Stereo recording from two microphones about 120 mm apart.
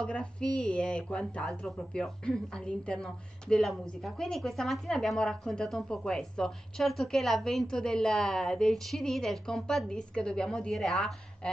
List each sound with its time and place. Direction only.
0.0 s a woman's voice: 10° left (ahead or behind)